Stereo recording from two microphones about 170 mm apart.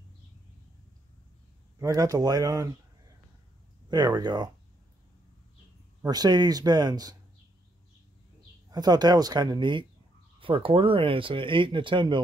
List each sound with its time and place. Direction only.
1.8 s speech: 20° right (ahead or behind)
3.9 s speech: 25° right (ahead or behind)
6.0 s speech: 25° right (ahead or behind)
8.6 s speech: 25° right (ahead or behind)